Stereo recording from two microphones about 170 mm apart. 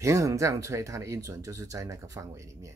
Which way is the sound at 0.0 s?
15° right (ahead or behind).